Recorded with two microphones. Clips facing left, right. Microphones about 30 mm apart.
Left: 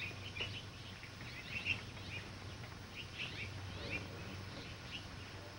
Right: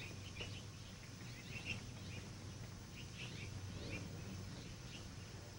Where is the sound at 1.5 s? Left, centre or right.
Left.